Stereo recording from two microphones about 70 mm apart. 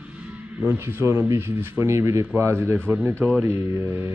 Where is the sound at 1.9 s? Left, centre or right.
Right.